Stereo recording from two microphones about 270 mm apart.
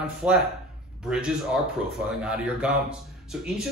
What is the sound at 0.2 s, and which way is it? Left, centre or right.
Speech, centre.